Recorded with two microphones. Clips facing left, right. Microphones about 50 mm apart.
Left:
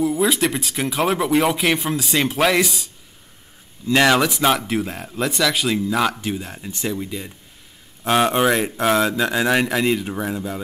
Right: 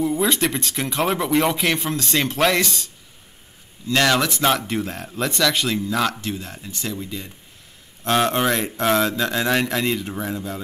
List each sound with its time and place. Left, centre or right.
0.0 s a man's voice: centre